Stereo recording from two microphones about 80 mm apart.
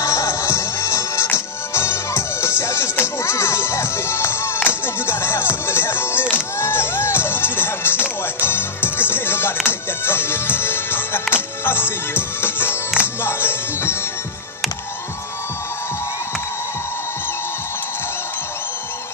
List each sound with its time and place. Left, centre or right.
0.0 s music: left